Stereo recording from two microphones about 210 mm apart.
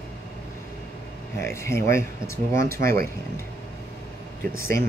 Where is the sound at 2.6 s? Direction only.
45° right (ahead or behind).